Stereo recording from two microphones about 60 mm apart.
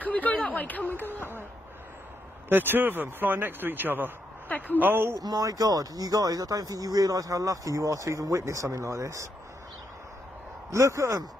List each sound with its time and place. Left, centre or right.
0.0 s a sound: left
0.8 s speech: right
2.5 s a man's voice: right
4.5 s a woman's voice: left
4.7 s a man's voice: right
5.1 s speech: right
10.7 s a man's voice: right